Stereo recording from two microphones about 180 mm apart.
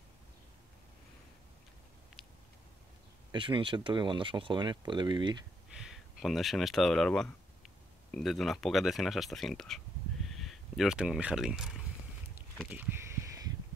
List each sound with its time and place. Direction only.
3.3 s speech: 25° right (ahead or behind)
5.8 s speech: centre (ahead or behind)